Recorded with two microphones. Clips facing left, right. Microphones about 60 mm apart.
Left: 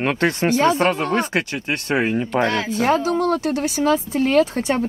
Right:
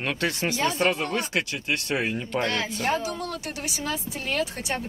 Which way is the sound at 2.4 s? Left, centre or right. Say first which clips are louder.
Left 5 dB; centre.